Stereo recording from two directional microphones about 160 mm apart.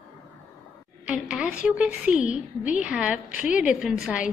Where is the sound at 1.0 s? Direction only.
5° right (ahead or behind).